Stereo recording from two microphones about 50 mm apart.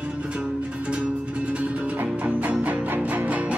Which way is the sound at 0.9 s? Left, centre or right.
Right.